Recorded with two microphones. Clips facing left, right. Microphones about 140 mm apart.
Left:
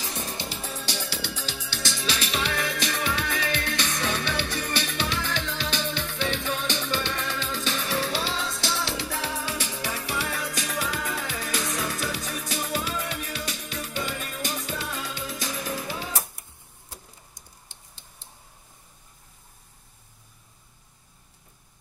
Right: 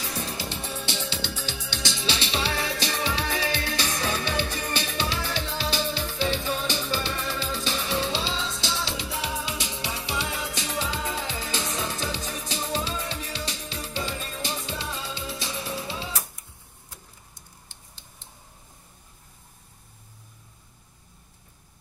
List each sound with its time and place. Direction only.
0.0 s music: 35° left (ahead or behind)
1.6 s music: 20° right (ahead or behind)